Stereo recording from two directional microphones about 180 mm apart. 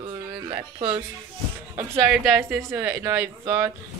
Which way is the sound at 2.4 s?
15° right (ahead or behind).